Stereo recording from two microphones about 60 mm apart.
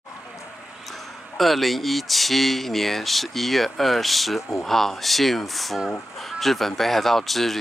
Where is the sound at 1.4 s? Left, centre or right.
Centre.